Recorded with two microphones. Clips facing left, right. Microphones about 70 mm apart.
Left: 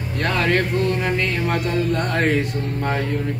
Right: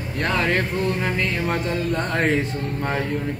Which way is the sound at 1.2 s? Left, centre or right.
Centre.